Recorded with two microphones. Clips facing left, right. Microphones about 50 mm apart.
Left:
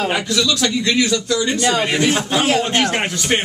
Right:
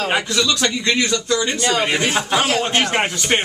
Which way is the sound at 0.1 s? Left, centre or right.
Centre.